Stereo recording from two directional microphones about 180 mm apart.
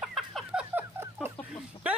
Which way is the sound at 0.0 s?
Centre (ahead or behind).